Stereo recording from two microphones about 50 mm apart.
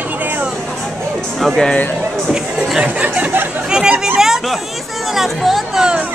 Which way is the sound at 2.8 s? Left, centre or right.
Right.